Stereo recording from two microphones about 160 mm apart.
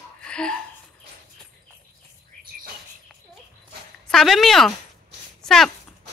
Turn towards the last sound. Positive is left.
turn(degrees=0)  # may be behind; listen again after turning